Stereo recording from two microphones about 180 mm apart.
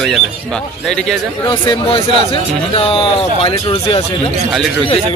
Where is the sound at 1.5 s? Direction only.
25° left (ahead or behind).